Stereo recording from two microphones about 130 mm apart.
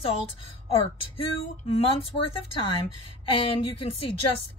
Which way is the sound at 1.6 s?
50° left (ahead or behind).